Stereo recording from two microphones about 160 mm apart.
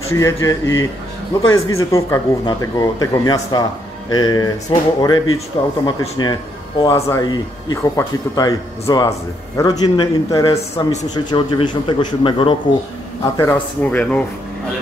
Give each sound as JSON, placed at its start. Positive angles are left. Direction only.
{"t": 0.1, "sound": "a man's voice", "side_deg": 20}
{"t": 10.5, "sound": "a man's voice", "side_deg": 40}
{"t": 13.2, "sound": "speech", "side_deg": 20}
{"t": 13.8, "sound": "speech", "side_deg": 5}